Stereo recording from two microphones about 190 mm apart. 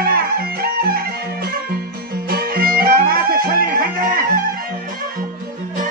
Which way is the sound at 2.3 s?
50° right (ahead or behind).